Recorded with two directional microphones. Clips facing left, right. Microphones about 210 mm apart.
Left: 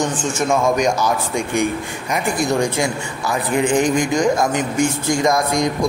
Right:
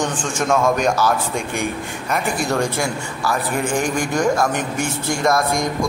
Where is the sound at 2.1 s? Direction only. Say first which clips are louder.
Left 2 dB; 15° left (ahead or behind).